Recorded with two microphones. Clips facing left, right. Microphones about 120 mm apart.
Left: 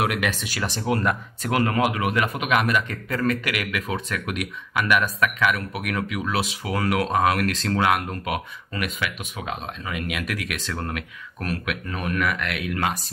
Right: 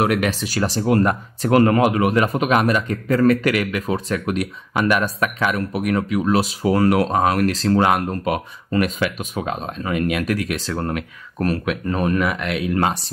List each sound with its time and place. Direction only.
0.0 s speech: 35° right (ahead or behind)